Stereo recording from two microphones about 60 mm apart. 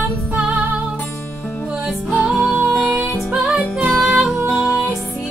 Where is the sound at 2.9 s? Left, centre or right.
Centre.